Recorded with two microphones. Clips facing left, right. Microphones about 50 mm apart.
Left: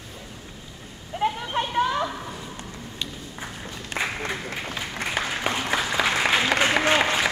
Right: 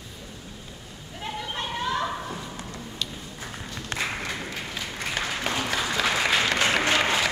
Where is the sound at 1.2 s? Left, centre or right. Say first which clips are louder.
Left 10 dB; left.